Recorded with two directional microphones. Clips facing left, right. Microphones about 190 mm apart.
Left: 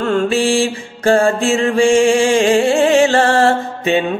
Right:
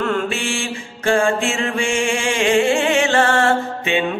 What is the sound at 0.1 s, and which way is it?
Mantra, 35° left (ahead or behind).